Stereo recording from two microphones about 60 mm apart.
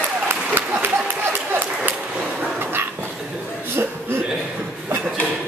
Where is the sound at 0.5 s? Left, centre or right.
Right.